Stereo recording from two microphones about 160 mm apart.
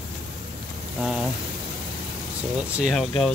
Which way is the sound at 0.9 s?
5° right (ahead or behind).